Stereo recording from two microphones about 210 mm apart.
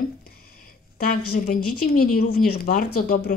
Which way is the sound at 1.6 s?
90° left.